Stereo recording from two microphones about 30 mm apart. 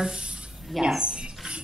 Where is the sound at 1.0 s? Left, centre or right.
Right.